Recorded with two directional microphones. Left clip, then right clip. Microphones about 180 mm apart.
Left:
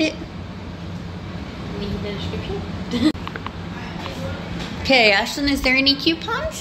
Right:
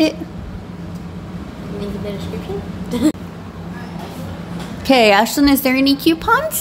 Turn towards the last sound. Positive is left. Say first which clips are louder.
# right 7 dB
turn(degrees=-90)